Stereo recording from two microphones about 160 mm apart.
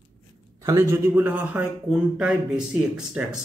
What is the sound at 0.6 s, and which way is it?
A man's voice, 15° right (ahead or behind).